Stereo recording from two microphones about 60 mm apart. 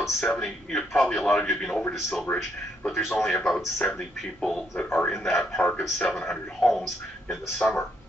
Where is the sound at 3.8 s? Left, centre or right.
Centre.